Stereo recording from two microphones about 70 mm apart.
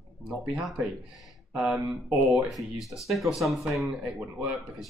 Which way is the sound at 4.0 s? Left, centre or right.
Centre.